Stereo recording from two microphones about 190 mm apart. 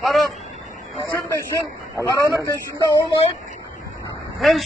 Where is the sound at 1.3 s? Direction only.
20° left (ahead or behind).